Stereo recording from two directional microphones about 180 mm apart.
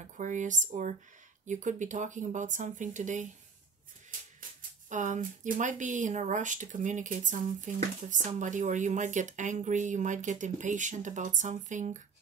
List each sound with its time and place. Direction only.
0.2 s speech: 45° right (ahead or behind)
4.4 s speech: 45° right (ahead or behind)